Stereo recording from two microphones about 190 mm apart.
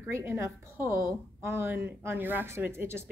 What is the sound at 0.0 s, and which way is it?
Speech, 15° right (ahead or behind).